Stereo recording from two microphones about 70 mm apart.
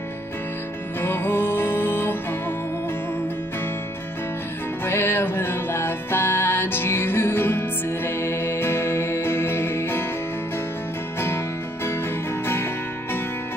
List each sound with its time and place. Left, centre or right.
1.0 s music: left
4.8 s music: left
11.1 s music: left